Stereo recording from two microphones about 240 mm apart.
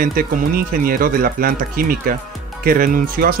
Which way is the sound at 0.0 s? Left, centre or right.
Right.